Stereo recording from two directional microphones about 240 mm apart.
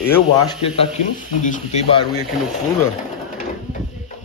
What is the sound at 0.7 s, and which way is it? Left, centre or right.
Speech, left.